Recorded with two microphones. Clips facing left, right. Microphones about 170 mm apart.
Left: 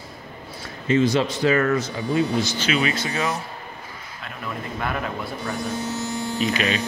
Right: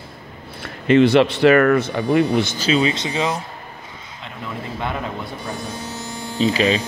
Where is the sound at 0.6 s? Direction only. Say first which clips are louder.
Right 6 dB; 65° right (ahead or behind).